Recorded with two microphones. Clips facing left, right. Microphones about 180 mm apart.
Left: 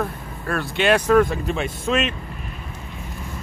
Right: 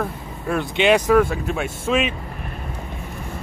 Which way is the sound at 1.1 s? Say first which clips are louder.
Even; 5° right (ahead or behind).